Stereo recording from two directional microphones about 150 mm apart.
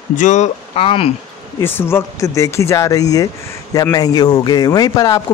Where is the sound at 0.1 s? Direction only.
55° left (ahead or behind).